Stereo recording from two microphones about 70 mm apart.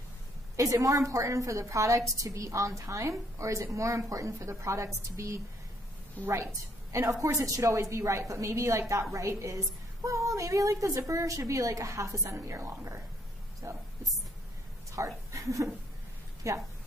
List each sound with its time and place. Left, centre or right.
0.6 s a woman's voice: right
15.0 s a woman's voice: right